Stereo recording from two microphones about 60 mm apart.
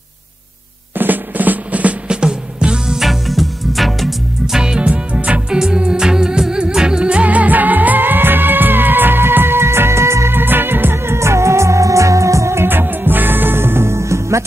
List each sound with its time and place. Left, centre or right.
0.9 s music: right; by 3.1 s centre
3.1 s music: centre
4.6 s music: centre; by 12.6 s right
12.6 s music: right